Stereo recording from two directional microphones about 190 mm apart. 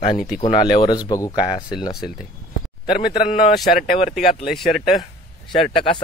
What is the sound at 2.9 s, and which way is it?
Speech, 50° left (ahead or behind).